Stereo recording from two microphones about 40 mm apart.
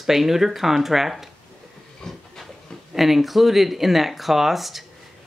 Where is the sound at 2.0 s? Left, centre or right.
Centre.